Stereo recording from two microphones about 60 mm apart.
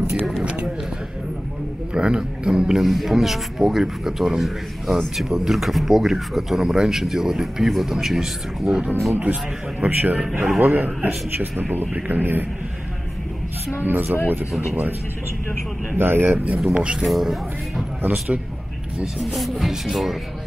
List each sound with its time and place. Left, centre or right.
0.4 s run: right
2.0 s a man's voice: centre
9.1 s a man's voice: right
13.8 s a man's voice: right
16.0 s a man's voice: right
16.7 s speech: centre
17.0 s a man's voice: centre
19.1 s a man's voice: centre